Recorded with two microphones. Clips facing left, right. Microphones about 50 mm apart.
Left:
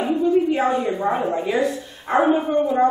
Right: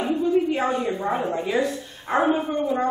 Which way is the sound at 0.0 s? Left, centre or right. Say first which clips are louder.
Left 3 dB; centre.